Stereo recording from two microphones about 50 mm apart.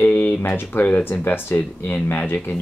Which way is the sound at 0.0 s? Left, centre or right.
Left.